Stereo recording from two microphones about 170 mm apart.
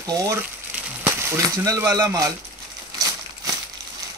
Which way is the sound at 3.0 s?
20° right (ahead or behind).